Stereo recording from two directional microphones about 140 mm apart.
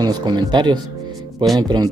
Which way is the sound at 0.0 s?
30° right (ahead or behind).